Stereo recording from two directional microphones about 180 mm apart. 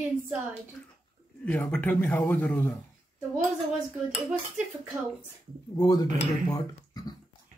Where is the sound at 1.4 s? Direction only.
10° left (ahead or behind).